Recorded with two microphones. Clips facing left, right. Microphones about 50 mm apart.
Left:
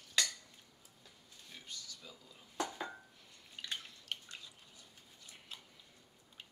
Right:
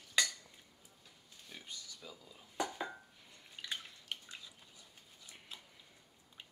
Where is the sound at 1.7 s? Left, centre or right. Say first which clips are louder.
Left 2 dB; right.